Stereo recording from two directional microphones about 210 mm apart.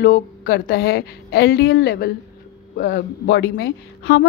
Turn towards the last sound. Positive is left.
turn(degrees=55)  # may be behind; listen again after turning